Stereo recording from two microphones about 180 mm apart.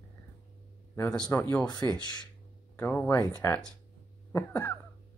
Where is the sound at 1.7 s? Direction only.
20° left (ahead or behind).